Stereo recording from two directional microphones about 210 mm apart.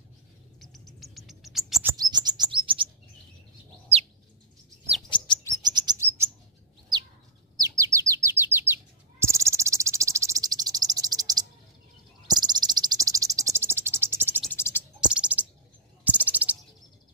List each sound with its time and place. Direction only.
0.6 s bird: centre (ahead or behind)
1.4 s chirp: centre (ahead or behind)
1.9 s chirp: 20° right (ahead or behind)
5.1 s chirp: 20° left (ahead or behind)
5.6 s chirp: 20° right (ahead or behind)
7.5 s bird: 15° right (ahead or behind)
9.2 s cricket: 15° right (ahead or behind)
14.4 s cricket: 10° left (ahead or behind)
15.0 s bird: 5° right (ahead or behind)